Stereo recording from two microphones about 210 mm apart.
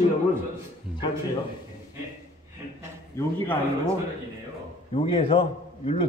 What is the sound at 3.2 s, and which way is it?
Speech, 10° left (ahead or behind).